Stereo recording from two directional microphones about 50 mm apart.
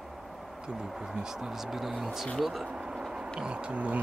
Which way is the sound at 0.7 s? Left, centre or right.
Centre.